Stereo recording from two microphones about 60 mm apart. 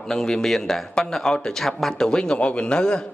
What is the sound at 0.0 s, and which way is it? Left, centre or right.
A man's voice, centre.